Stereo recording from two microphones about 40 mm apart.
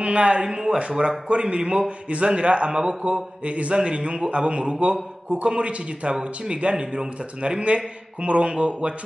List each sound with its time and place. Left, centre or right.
0.0 s a man's voice: right
0.5 s a man's voice: centre